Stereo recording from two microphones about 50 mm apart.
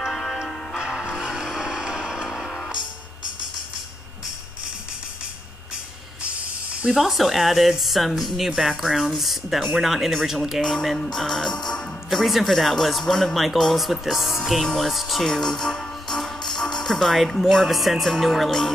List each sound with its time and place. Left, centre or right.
0.1 s music: centre
0.7 s vehicle: centre
6.2 s snake: centre
7.0 s speech: centre
12.2 s speech: centre